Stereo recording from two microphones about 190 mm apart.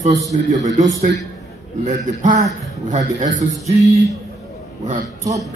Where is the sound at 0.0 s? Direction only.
35° right (ahead or behind).